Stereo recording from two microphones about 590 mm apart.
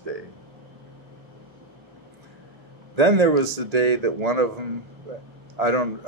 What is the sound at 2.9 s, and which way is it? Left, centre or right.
Speech, right.